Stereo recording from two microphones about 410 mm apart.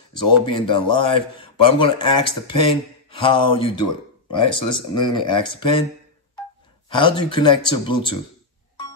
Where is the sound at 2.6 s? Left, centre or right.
Centre.